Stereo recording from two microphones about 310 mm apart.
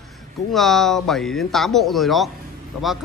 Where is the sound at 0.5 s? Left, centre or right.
Centre.